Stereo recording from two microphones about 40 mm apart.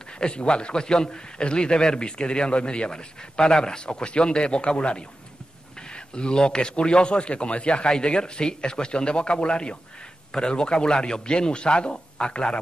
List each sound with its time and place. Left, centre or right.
0.0 s a man's voice: left